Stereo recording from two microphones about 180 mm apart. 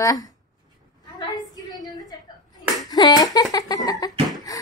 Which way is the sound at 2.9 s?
20° left (ahead or behind).